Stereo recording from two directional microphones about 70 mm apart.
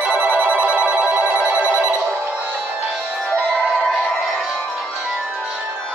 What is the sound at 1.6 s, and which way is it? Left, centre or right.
Telephone bell ringing, left.